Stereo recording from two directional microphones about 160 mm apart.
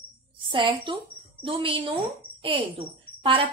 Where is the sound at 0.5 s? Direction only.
30° right (ahead or behind).